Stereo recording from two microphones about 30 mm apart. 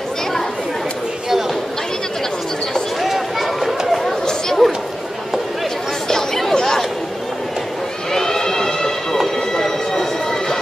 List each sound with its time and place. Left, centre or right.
3.0 s run: centre
4.6 s a sound: centre
6.0 s chatter: centre
8.1 s horse: centre
9.5 s siren: centre